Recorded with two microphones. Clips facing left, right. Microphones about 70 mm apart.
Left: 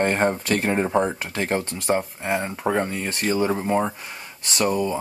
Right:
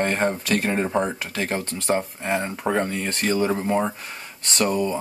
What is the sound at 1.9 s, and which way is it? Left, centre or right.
Speech, centre.